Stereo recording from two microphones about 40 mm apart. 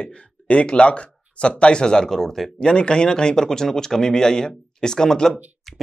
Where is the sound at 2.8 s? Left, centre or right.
Left.